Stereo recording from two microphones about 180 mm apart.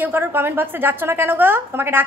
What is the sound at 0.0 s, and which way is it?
A woman's voice, 10° right (ahead or behind).